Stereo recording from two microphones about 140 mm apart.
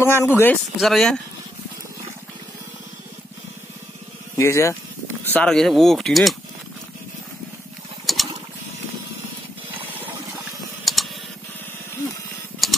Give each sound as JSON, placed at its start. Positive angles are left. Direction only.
{"t": 0.0, "sound": "speech", "side_deg": 20}
{"t": 0.7, "sound": "speech", "side_deg": 0}
{"t": 4.4, "sound": "speech", "side_deg": 20}
{"t": 5.3, "sound": "speech", "side_deg": 5}
{"t": 8.1, "sound": "mechanisms", "side_deg": 0}
{"t": 10.9, "sound": "typing", "side_deg": 0}
{"t": 12.6, "sound": "typing", "side_deg": 0}